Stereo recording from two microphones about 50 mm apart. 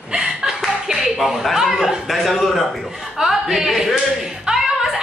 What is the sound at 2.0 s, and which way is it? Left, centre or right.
Chuckle, centre.